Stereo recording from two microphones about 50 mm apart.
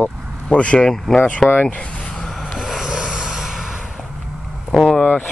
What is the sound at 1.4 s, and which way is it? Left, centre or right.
Speech, left.